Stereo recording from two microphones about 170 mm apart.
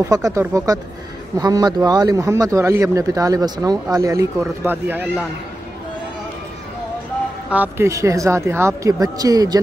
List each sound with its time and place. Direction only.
0.0 s a man's voice: 20° right (ahead or behind)
7.4 s speech: 10° right (ahead or behind)